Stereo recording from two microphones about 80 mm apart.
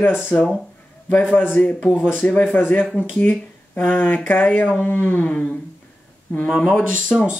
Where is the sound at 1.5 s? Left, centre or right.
Centre.